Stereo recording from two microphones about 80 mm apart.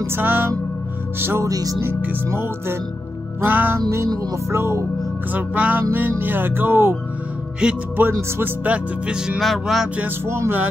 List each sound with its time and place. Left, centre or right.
0.0 s music: right
1.4 s music: right
1.9 s music: right
3.4 s music: right
5.3 s music: right
7.6 s music: centre
8.0 s music: right; by 9.8 s centre
10.2 s music: right